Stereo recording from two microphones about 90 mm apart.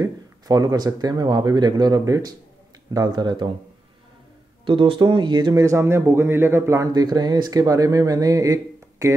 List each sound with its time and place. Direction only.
0.0 s speech: 45° right (ahead or behind)
4.6 s speech: 65° right (ahead or behind)
5.6 s speech: 35° right (ahead or behind)
6.9 s speech: 45° right (ahead or behind)